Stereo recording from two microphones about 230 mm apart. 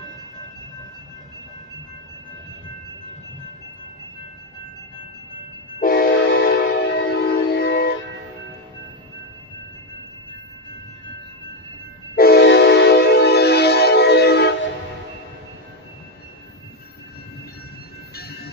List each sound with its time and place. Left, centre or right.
5.8 s train: left
12.2 s train: left
18.1 s train: left